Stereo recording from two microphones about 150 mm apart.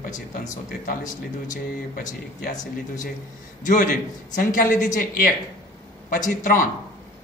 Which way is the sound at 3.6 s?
60° left (ahead or behind).